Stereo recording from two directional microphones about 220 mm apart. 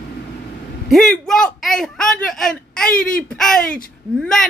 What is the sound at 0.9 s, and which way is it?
Speech, centre (ahead or behind).